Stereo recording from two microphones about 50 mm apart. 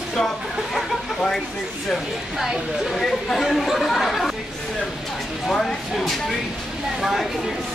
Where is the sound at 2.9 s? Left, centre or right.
Centre.